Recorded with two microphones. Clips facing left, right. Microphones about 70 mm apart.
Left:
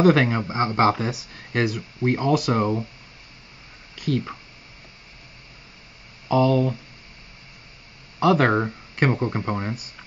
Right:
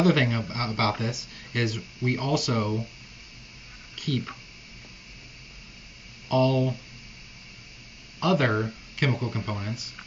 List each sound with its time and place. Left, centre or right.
0.0 s speech: left
4.1 s speech: left
6.2 s speech: left
8.2 s speech: left